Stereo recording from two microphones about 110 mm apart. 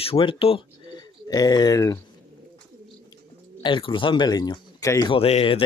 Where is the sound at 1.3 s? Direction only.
35° left (ahead or behind).